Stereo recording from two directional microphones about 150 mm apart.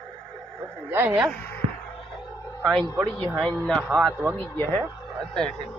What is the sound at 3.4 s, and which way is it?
Speech, 5° left (ahead or behind).